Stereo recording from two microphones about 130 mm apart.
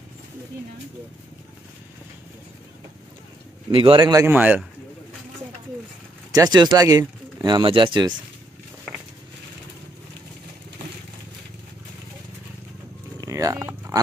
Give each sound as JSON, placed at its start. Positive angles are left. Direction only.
{"t": 3.7, "sound": "speech", "side_deg": -40}
{"t": 4.3, "sound": "a man's voice", "side_deg": -15}
{"t": 6.3, "sound": "speech", "side_deg": -30}
{"t": 13.2, "sound": "a sound", "side_deg": -25}